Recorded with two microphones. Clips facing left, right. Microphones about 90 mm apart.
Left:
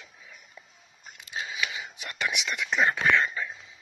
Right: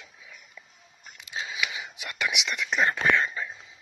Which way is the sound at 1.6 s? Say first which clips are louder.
Even; 30° left (ahead or behind).